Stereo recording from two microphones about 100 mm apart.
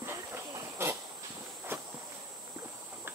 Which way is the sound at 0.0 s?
25° right (ahead or behind).